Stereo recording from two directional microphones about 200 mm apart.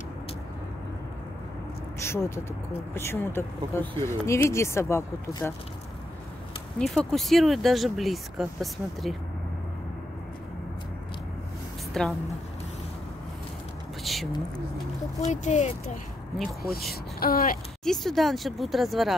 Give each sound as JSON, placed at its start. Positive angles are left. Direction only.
{"t": 2.0, "sound": "speech", "side_deg": 15}
{"t": 6.8, "sound": "speech", "side_deg": 0}
{"t": 11.9, "sound": "a woman's voice", "side_deg": 0}
{"t": 14.0, "sound": "whispering", "side_deg": 0}
{"t": 15.2, "sound": "speech", "side_deg": 35}
{"t": 17.2, "sound": "speech", "side_deg": 45}
{"t": 17.8, "sound": "speech", "side_deg": 0}